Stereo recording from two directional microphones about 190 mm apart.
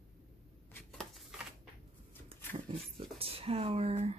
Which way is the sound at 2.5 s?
30° right (ahead or behind).